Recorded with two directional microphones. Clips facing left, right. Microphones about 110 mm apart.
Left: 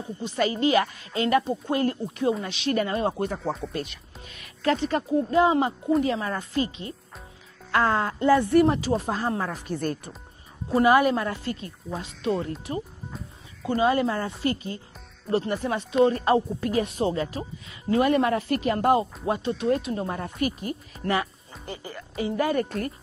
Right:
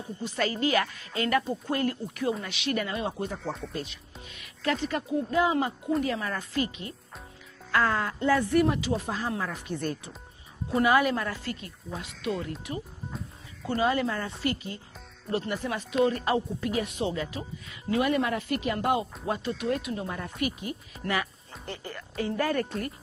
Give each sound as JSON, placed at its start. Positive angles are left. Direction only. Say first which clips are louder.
{"t": 0.2, "sound": "speech", "louder": "left 4 dB", "side_deg": 20}
{"t": 3.2, "sound": "speech", "louder": "left 5 dB", "side_deg": 60}
{"t": 4.4, "sound": "speech", "louder": "left 5 dB", "side_deg": 35}
{"t": 10.7, "sound": "speech", "louder": "left 4 dB", "side_deg": 30}
{"t": 19.2, "sound": "speech", "louder": "left 5 dB", "side_deg": 25}
{"t": 21.6, "sound": "a woman's voice", "louder": "left 2 dB", "side_deg": 15}